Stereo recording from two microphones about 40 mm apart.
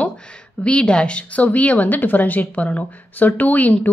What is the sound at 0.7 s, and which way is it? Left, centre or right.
A woman's voice, left.